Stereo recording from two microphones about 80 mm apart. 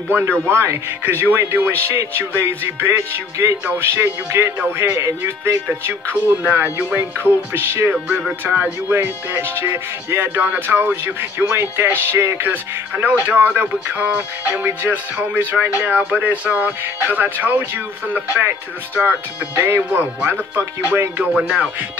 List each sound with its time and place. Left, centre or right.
0.5 s speech: right
1.0 s music: right
7.9 s music: centre
8.5 s music: right
19.5 s speech: right
19.9 s music: right
21.2 s music: centre